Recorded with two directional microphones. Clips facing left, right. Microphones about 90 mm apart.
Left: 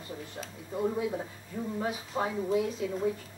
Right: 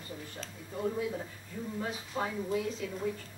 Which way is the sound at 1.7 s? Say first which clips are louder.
Left 3 dB; 20° left (ahead or behind).